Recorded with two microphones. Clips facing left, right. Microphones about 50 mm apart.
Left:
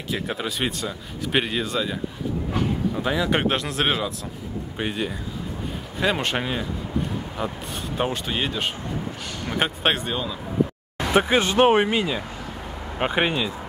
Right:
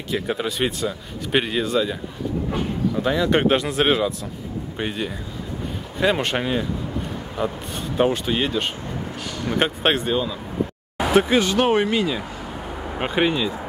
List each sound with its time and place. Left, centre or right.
0.1 s speech: centre
3.0 s speech: centre
11.0 s a sound: centre
11.3 s speech: left